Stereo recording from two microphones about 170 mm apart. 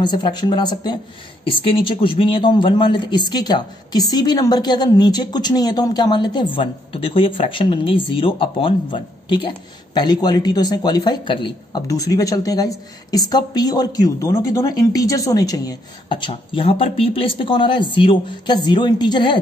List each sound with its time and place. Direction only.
0.0 s speech: 25° left (ahead or behind)